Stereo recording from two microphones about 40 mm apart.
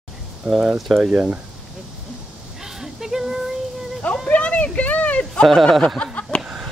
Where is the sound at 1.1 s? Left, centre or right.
Right.